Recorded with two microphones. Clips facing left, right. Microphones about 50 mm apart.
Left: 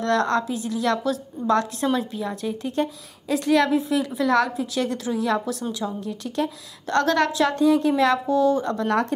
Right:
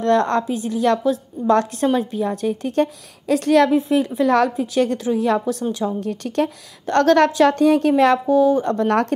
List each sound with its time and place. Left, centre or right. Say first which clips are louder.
0.0 s a woman's voice: right 4 dB; right
2.3 s a woman's voice: right 5 dB; right
6.0 s speech: right 5 dB; right
6.9 s a woman's voice: right 6 dB; right
8.3 s speech: right 4 dB; right
8.6 s a woman's voice: right 4 dB; right